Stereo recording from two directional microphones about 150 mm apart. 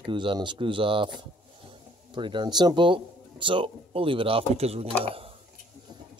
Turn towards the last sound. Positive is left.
turn(degrees=-40)  # may be behind; listen again after turning